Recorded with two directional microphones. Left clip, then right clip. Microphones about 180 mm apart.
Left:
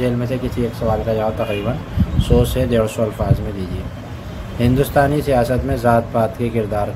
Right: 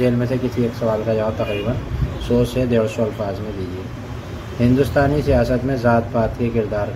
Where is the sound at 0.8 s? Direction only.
15° left (ahead or behind).